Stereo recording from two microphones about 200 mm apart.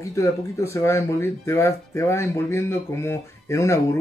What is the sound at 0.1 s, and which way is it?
Speech, 15° left (ahead or behind).